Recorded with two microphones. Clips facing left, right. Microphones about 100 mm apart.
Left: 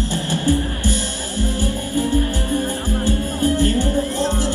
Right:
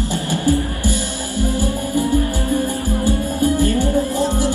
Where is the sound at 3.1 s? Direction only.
15° right (ahead or behind).